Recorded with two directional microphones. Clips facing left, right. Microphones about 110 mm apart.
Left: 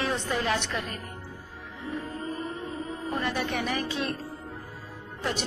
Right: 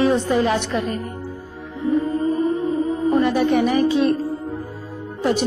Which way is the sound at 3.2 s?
15° right (ahead or behind).